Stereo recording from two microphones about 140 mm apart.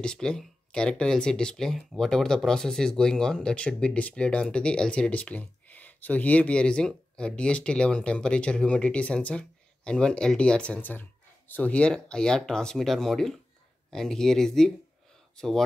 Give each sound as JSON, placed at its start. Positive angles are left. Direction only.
{"t": 0.0, "sound": "speech", "side_deg": 5}